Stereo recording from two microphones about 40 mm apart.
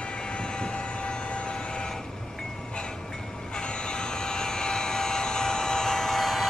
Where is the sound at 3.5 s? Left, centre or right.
Left.